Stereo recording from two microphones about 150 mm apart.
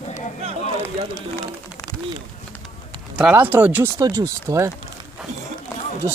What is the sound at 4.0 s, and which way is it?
Speech, 25° right (ahead or behind).